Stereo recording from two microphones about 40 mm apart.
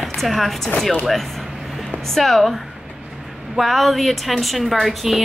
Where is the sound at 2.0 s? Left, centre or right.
Centre.